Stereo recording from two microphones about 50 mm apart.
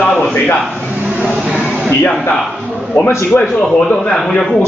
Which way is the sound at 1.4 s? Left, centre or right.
Centre.